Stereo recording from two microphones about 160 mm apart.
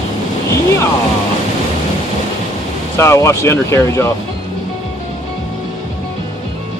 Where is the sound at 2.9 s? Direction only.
15° left (ahead or behind).